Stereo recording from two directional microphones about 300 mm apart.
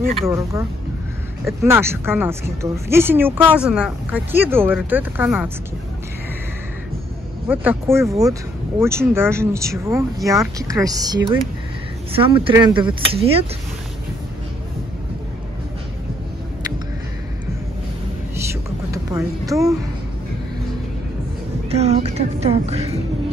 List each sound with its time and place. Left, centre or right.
0.2 s speech: centre
7.4 s speech: centre
18.3 s a sound: centre
21.6 s music: right